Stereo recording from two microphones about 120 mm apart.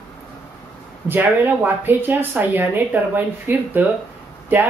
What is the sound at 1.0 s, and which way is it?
Speech, 15° right (ahead or behind).